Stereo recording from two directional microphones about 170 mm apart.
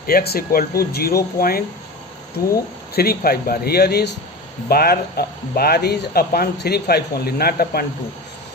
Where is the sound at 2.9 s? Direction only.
65° left (ahead or behind).